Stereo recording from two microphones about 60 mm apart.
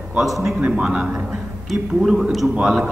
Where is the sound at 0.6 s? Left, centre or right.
Centre.